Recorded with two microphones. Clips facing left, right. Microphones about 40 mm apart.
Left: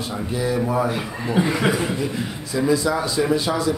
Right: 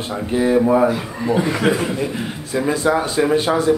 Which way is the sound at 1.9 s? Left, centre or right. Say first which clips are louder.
Right 2 dB; right.